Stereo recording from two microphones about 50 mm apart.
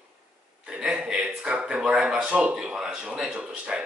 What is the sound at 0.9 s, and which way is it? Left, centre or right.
Speech, centre.